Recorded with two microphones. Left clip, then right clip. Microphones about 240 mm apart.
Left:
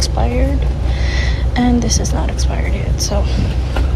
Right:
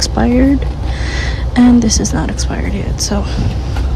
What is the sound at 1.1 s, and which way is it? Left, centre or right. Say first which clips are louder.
A woman's voice: right 2 dB; right.